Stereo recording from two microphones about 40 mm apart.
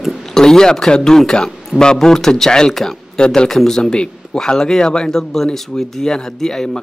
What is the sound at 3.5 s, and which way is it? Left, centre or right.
Speech, centre.